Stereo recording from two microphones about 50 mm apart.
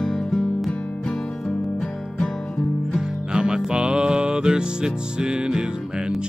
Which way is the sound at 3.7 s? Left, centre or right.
Centre.